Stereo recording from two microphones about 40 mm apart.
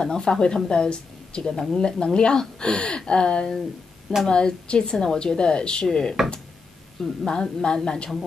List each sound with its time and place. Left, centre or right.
0.0 s a woman's voice: centre
6.2 s speech: centre
7.0 s a woman's voice: centre